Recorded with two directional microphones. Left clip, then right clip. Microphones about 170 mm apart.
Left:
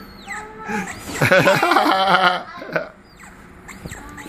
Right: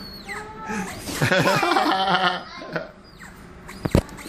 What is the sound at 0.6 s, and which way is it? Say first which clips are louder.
Cat: left 4 dB; 25° left (ahead or behind).